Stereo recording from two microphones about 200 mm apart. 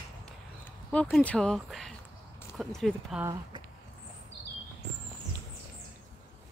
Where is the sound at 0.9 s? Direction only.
5° left (ahead or behind).